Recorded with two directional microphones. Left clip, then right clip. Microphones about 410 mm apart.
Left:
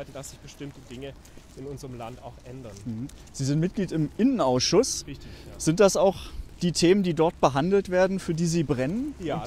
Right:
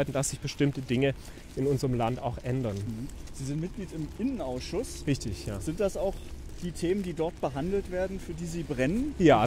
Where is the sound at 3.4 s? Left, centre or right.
Left.